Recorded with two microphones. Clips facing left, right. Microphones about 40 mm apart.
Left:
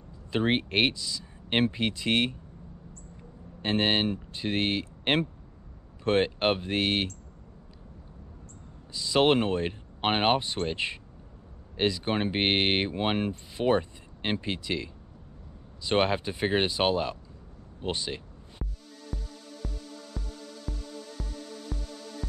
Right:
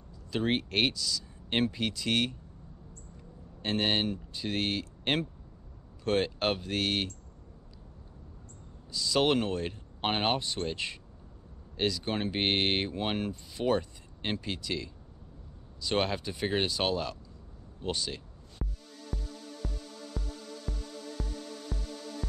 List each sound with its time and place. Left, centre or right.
0.3 s speech: left
8.9 s speech: left
18.6 s music: centre